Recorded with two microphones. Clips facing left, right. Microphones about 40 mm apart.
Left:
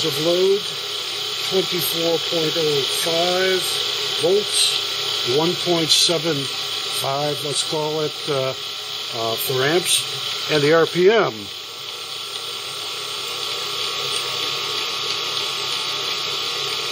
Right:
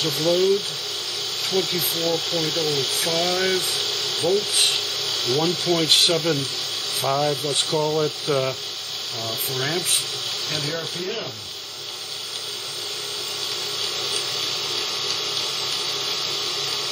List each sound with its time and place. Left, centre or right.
0.1 s speech: left
1.5 s speech: left
4.7 s electric toothbrush: left
5.9 s speech: centre
9.2 s speech: left
10.5 s speech: left
11.0 s speech: left
14.0 s a sound: left